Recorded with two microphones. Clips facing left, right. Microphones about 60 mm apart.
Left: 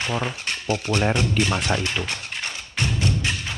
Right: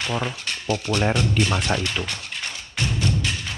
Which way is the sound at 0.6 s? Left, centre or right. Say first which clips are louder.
Even; left.